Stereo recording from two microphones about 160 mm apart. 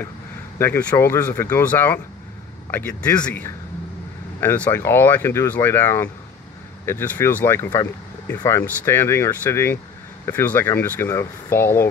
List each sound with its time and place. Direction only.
0.6 s speech: 10° left (ahead or behind)